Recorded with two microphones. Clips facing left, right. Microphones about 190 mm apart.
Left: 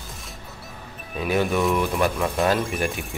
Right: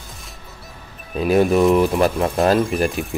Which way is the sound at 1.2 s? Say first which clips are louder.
Right 7 dB; 35° right (ahead or behind).